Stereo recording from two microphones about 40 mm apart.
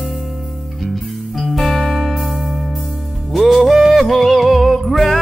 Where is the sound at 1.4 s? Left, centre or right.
Centre.